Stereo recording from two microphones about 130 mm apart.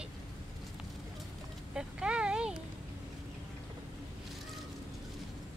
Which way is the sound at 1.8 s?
5° right (ahead or behind).